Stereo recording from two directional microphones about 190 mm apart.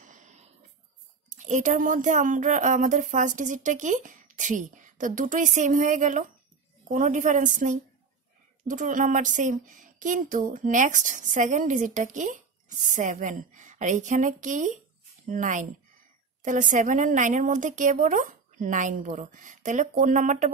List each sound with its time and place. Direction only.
1.3 s speech: 40° right (ahead or behind)